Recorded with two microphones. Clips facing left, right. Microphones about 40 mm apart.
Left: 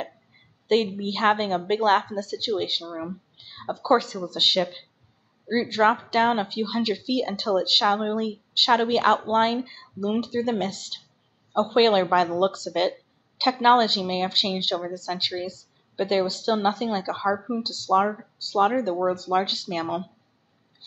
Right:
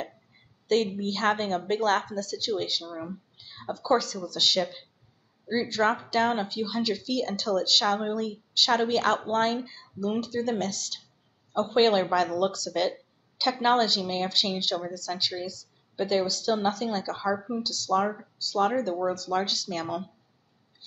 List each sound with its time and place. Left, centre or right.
0.7 s speech: left